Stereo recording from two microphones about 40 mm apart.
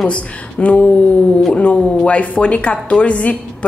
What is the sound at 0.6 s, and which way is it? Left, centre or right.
A woman's voice, left.